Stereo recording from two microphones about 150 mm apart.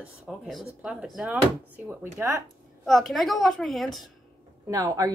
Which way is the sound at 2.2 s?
20° right (ahead or behind).